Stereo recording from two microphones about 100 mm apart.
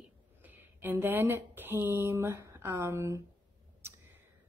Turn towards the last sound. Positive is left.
turn(degrees=-30)  # may be behind; listen again after turning